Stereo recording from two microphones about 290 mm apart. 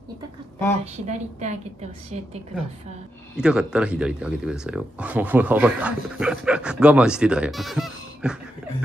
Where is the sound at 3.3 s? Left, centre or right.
Centre.